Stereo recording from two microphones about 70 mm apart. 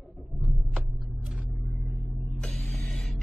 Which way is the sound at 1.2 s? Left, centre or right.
Right.